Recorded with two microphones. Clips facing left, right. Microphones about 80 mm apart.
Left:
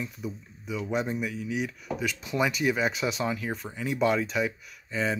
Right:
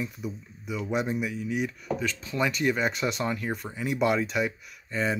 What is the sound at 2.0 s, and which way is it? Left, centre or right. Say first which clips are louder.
Speech: left 2 dB; centre.